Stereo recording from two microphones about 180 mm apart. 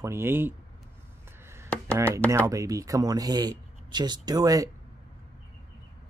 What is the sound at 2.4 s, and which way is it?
Speech, 20° right (ahead or behind).